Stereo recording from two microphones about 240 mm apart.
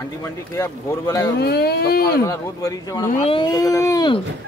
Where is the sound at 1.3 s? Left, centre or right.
Left.